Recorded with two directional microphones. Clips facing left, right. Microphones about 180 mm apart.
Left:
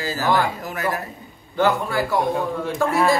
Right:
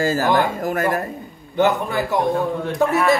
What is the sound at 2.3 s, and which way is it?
Speech, centre (ahead or behind).